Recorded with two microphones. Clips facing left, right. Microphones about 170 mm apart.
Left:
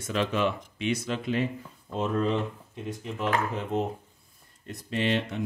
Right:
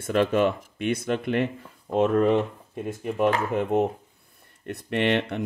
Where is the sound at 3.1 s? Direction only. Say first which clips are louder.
Right 6 dB; 50° right (ahead or behind).